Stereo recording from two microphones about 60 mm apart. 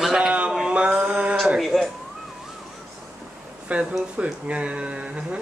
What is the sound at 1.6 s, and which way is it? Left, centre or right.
Speech, centre.